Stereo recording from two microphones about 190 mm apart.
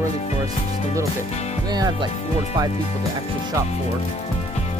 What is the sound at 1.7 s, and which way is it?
Speech, 20° right (ahead or behind).